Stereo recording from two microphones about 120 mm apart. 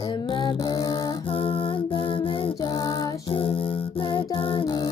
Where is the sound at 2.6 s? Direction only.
35° left (ahead or behind).